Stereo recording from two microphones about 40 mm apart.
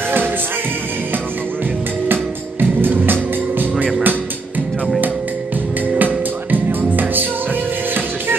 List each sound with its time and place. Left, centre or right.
2.6 s music: right
5.9 s music: right